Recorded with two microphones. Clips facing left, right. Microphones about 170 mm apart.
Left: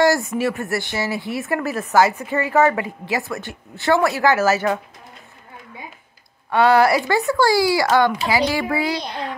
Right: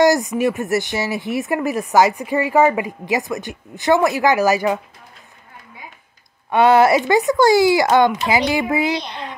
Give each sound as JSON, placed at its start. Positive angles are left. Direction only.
{"t": 0.0, "sound": "speech", "side_deg": -15}
{"t": 6.5, "sound": "speech", "side_deg": -20}